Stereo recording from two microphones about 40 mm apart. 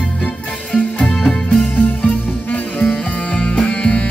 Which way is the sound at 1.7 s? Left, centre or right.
Left.